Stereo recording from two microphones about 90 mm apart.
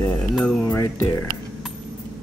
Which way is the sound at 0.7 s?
25° left (ahead or behind).